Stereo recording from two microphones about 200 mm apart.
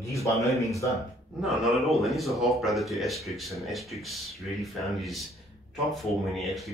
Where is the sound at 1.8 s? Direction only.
Centre (ahead or behind).